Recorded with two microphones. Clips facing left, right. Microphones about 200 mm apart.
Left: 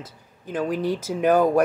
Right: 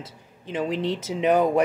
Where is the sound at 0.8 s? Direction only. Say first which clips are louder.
Left 2 dB; 25° right (ahead or behind).